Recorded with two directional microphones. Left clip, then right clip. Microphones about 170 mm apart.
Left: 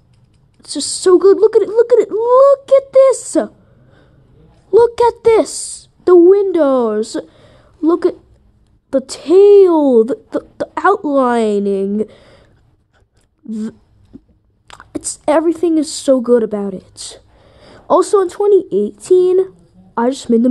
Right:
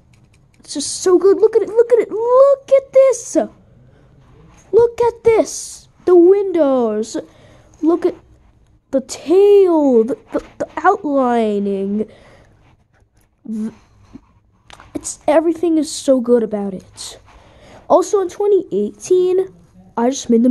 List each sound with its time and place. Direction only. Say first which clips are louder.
0.6 s speech: left 2 dB; 15° left (ahead or behind)
3.3 s a sound: left 1 dB; 15° left (ahead or behind)
4.6 s a woman's voice: left 3 dB; 20° left (ahead or behind)
13.5 s a woman's voice: left 1 dB; 20° left (ahead or behind)